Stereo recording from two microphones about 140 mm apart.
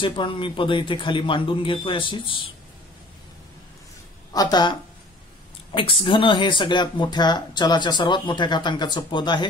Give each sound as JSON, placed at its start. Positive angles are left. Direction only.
{"t": 0.0, "sound": "speech", "side_deg": 35}
{"t": 4.3, "sound": "speech", "side_deg": 30}
{"t": 5.8, "sound": "speech", "side_deg": 40}